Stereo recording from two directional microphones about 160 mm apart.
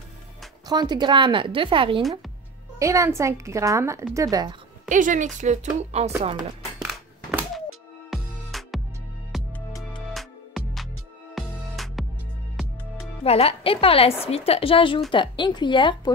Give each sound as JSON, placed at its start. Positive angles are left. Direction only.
{"t": 0.7, "sound": "a woman's voice", "side_deg": -25}
{"t": 2.8, "sound": "a woman's voice", "side_deg": -20}
{"t": 4.8, "sound": "a woman's voice", "side_deg": -55}
{"t": 6.8, "sound": "thunk", "side_deg": -5}
{"t": 8.1, "sound": "music", "side_deg": 0}
{"t": 13.2, "sound": "a woman's voice", "side_deg": 40}